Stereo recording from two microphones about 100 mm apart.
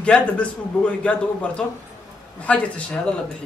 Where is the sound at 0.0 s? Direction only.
10° left (ahead or behind).